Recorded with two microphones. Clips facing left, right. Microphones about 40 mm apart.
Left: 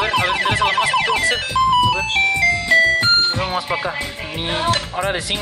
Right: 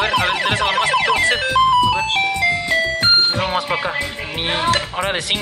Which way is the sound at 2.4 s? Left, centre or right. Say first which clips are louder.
Left 3 dB; centre.